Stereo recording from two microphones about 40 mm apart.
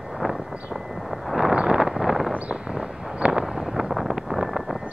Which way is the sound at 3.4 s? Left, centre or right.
Centre.